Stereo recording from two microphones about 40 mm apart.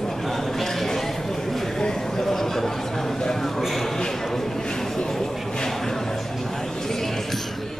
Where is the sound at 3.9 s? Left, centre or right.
Centre.